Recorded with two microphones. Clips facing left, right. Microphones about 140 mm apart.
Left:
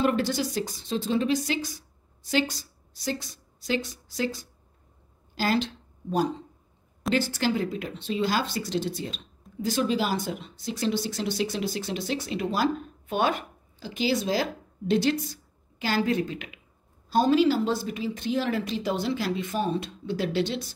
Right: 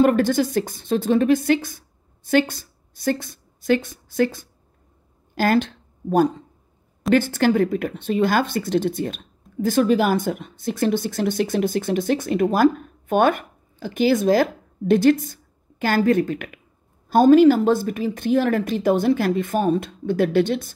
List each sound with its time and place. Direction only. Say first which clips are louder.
0.0 s a woman's voice: right 8 dB; 50° right (ahead or behind)